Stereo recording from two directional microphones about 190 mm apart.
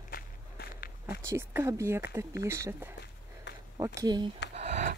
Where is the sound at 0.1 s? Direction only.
50° left (ahead or behind).